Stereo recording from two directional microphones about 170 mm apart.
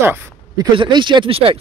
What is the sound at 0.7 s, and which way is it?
Speech, 30° right (ahead or behind).